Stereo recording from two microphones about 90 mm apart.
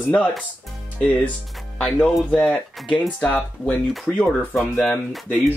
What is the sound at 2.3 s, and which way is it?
Speech, 10° left (ahead or behind).